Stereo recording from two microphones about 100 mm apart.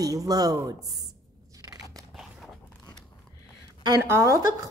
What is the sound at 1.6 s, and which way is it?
Biting, 40° right (ahead or behind).